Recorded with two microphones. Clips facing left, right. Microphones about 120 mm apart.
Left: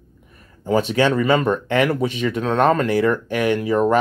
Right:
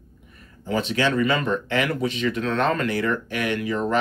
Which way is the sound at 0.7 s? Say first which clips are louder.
Left 4 dB; 45° left (ahead or behind).